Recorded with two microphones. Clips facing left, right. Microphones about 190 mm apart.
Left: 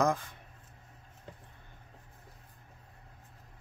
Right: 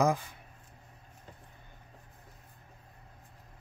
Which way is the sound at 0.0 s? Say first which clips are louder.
Right 1 dB; 10° right (ahead or behind).